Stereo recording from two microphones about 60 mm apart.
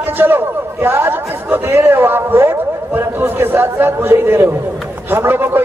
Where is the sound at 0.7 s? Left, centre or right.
Right.